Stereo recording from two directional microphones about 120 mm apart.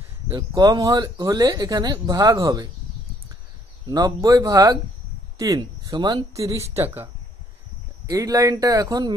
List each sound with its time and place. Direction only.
0.5 s speech: 30° right (ahead or behind)
3.9 s speech: 30° right (ahead or behind)
6.8 s speech: 15° right (ahead or behind)
8.1 s speech: 30° right (ahead or behind)